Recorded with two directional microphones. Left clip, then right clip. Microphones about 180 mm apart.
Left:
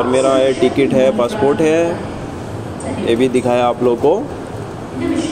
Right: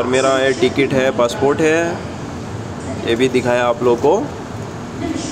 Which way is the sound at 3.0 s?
Centre (ahead or behind).